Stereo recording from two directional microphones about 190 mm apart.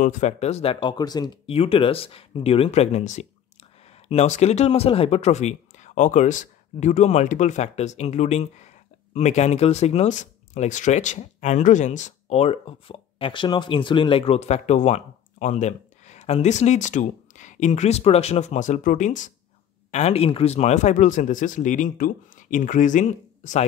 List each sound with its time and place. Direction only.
0.0 s speech: 35° left (ahead or behind)